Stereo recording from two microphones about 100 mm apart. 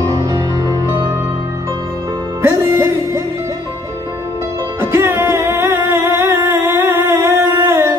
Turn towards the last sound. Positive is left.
turn(degrees=-30)  # may be behind; listen again after turning